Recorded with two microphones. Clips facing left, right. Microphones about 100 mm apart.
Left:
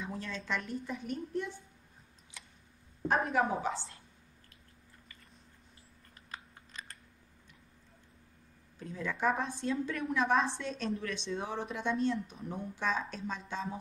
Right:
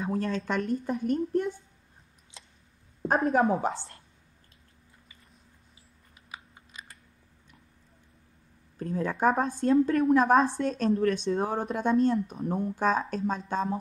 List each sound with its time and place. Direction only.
0.0 s a sound: 50° right (ahead or behind)
0.4 s a woman's voice: 45° right (ahead or behind)
3.1 s a woman's voice: 35° right (ahead or behind)
6.3 s computer keyboard: 10° right (ahead or behind)
8.7 s a woman's voice: 50° right (ahead or behind)